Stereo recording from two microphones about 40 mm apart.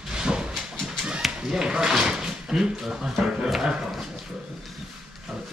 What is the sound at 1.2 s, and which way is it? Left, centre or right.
Speech, centre.